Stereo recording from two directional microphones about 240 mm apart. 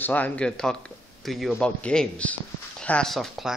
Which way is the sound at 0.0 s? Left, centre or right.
Centre.